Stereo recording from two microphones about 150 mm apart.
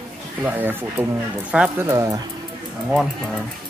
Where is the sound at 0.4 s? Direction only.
10° right (ahead or behind).